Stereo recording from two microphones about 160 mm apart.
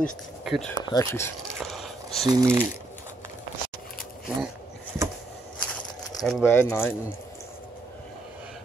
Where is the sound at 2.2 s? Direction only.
25° right (ahead or behind).